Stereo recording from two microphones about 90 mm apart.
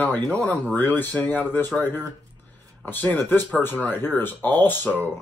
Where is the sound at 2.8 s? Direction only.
20° left (ahead or behind).